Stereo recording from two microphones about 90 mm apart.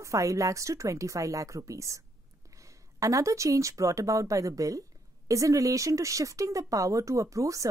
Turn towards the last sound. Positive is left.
turn(degrees=-35)  # may be behind; listen again after turning